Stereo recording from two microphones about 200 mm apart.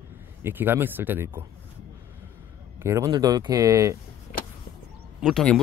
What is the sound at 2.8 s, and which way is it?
Speech, 15° right (ahead or behind).